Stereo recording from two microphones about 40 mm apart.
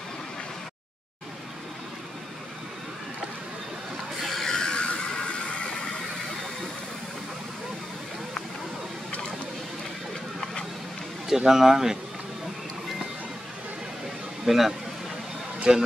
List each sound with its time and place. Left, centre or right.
4.4 s a sound: centre
5.5 s vehicle: left
11.2 s speech: centre
14.4 s speech: centre
15.7 s speech: right